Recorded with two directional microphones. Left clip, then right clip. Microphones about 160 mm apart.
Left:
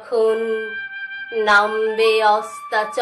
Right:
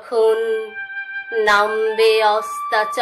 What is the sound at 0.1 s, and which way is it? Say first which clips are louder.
Speech: right 2 dB; 20° right (ahead or behind).